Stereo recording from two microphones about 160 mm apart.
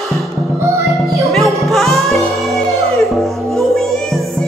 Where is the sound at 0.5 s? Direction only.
15° right (ahead or behind).